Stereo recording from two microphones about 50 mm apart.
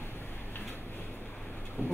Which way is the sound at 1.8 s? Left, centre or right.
Right.